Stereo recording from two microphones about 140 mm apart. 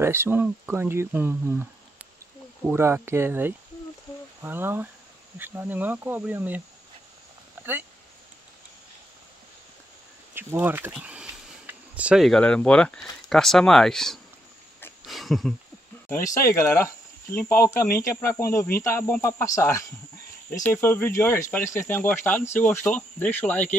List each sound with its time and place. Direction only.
0.0 s speech: 15° right (ahead or behind)
2.7 s speech: 20° right (ahead or behind)
10.3 s speech: 15° right (ahead or behind)
10.9 s a sound: 5° right (ahead or behind)
13.3 s speech: 5° left (ahead or behind)
15.0 s a sound: centre (ahead or behind)
16.4 s speech: 20° left (ahead or behind)